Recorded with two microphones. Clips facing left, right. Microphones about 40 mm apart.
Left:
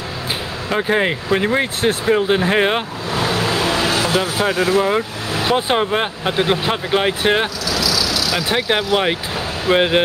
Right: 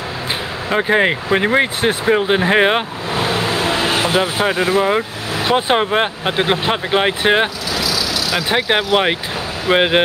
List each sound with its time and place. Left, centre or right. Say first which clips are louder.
0.7 s speech: right 3 dB; centre